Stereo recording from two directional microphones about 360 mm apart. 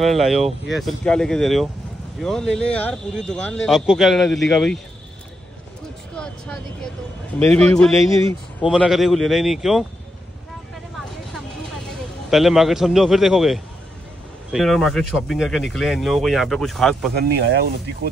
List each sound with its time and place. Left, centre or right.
0.0 s speech: centre
6.1 s vehicle: centre
7.3 s speech: centre
12.3 s speech: centre
17.1 s speech: right